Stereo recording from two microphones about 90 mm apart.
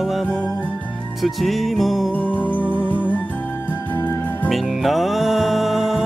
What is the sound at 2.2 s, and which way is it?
Music, 20° left (ahead or behind).